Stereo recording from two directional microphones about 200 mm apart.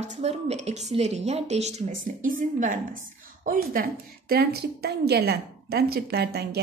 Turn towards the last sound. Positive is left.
turn(degrees=-55)  # may be behind; listen again after turning